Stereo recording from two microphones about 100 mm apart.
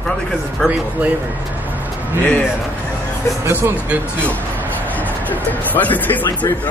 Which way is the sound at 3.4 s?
20° right (ahead or behind).